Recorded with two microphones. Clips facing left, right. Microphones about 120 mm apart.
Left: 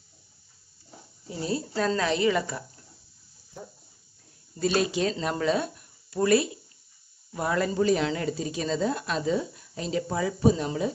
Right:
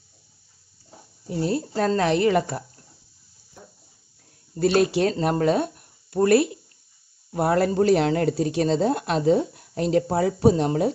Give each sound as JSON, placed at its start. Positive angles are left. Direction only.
{"t": 1.2, "sound": "a woman's voice", "side_deg": -55}
{"t": 4.6, "sound": "speech", "side_deg": -60}